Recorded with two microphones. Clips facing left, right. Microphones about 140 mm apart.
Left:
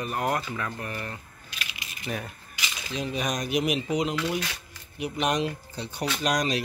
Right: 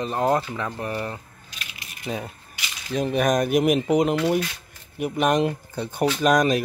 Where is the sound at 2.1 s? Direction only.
20° right (ahead or behind).